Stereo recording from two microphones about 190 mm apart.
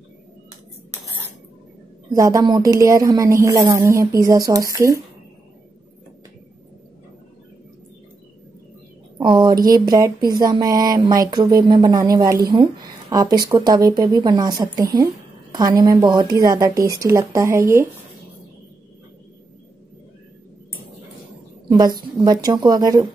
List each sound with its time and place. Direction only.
2.1 s speech: 20° right (ahead or behind)
9.2 s speech: 25° right (ahead or behind)
21.6 s speech: 20° right (ahead or behind)